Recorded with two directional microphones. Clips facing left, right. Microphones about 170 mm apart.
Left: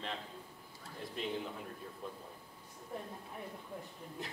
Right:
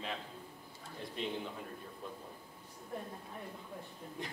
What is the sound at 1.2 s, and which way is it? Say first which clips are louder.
Speech: even; centre (ahead or behind).